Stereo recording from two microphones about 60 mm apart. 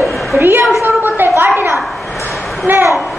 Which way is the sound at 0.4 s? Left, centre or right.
Right.